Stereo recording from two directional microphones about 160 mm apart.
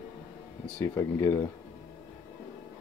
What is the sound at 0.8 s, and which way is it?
Speech, 20° left (ahead or behind).